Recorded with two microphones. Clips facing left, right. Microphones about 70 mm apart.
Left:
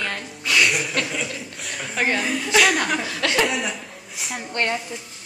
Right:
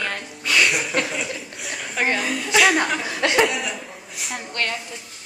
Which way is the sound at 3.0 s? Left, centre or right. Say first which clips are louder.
Right 2 dB; centre.